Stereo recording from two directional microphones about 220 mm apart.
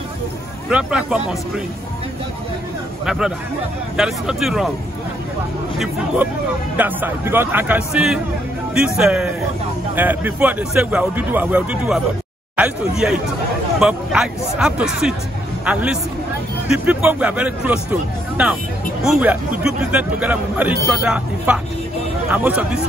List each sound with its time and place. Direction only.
0.7 s speech: 5° right (ahead or behind)
3.1 s speech: 5° right (ahead or behind)
6.8 s a man's voice: 10° right (ahead or behind)
19.0 s a man's voice: 5° right (ahead or behind)